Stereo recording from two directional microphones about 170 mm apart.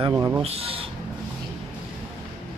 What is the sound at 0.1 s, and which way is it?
Speech, 15° right (ahead or behind).